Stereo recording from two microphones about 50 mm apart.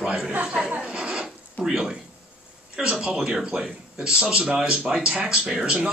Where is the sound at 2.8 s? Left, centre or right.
Centre.